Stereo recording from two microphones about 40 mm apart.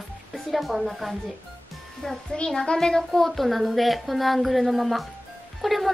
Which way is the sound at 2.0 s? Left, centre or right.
Centre.